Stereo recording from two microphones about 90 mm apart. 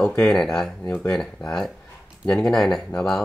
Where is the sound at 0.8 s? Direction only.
25° left (ahead or behind).